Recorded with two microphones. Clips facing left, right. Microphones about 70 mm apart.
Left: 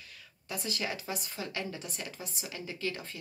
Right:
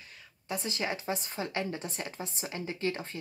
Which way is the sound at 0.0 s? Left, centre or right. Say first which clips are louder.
Right 1 dB; right.